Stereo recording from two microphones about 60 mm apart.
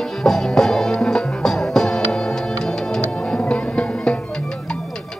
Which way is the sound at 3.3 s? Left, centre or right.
Centre.